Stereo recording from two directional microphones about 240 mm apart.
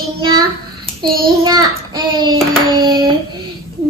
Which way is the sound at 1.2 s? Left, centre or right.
Centre.